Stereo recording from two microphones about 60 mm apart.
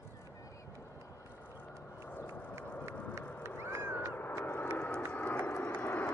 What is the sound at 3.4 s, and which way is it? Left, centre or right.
Cat, right.